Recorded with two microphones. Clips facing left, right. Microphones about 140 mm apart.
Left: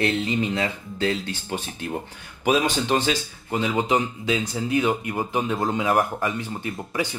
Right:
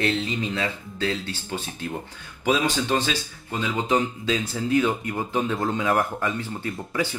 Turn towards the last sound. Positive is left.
turn(degrees=15)  # may be behind; listen again after turning